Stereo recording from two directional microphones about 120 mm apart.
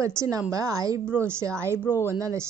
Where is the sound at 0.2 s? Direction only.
25° right (ahead or behind).